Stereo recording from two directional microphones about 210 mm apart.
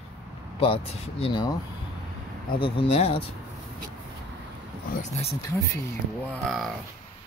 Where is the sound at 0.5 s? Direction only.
25° left (ahead or behind).